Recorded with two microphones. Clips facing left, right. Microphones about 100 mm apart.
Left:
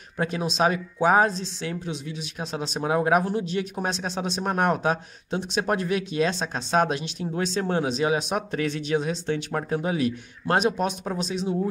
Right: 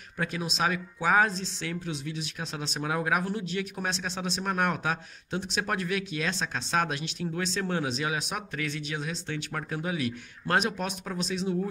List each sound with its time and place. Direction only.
0.2 s speech: 30° left (ahead or behind)